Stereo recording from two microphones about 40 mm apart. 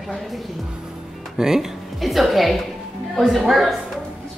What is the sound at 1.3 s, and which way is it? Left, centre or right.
Speech, centre.